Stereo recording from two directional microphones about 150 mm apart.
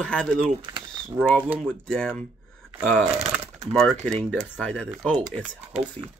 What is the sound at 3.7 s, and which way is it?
Speech, 5° left (ahead or behind).